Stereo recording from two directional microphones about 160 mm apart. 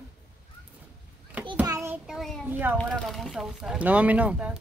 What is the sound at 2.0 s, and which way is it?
Speech, centre (ahead or behind).